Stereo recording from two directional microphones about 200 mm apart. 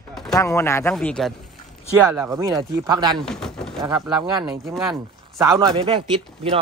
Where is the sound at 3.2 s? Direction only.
Centre (ahead or behind).